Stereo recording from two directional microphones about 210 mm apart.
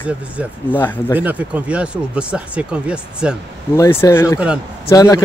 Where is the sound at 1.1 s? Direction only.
5° right (ahead or behind).